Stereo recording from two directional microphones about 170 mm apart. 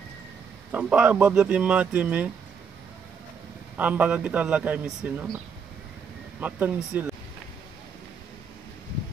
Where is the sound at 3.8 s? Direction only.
10° right (ahead or behind).